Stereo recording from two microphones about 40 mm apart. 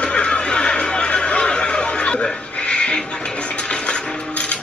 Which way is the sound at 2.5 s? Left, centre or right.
Left.